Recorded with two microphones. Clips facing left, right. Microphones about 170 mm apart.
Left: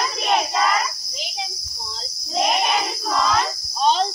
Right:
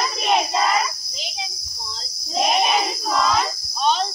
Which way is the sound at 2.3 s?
5° right (ahead or behind).